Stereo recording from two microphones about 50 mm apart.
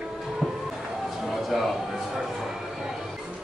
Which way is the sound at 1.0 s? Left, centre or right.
Centre.